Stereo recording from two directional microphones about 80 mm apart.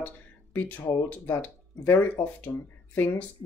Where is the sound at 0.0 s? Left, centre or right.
Left.